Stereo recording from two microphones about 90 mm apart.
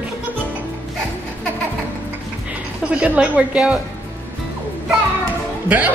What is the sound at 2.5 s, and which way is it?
A woman's voice, 15° right (ahead or behind).